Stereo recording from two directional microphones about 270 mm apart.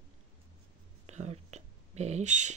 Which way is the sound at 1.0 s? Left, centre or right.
Right.